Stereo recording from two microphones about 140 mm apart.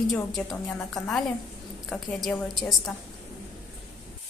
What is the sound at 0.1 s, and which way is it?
Speech, 5° left (ahead or behind).